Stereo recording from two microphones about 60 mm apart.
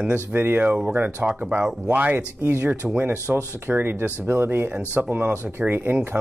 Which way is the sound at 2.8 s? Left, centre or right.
Centre.